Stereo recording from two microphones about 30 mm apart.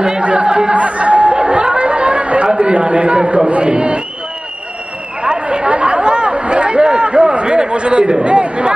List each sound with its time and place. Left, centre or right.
0.2 s chatter: right
0.7 s chatter: right
2.4 s a sound: right
3.6 s crowd: right
5.2 s chatter: right
7.3 s a man's voice: right